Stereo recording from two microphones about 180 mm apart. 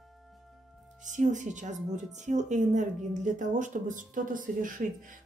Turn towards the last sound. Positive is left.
turn(degrees=-45)  # may be behind; listen again after turning